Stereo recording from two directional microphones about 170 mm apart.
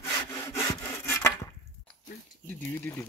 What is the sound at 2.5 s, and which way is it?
Speech, 15° left (ahead or behind).